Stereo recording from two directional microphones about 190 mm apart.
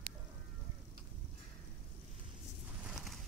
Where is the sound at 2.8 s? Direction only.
Centre (ahead or behind).